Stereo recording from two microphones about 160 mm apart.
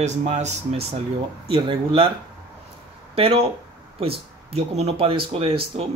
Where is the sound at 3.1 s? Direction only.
35° right (ahead or behind).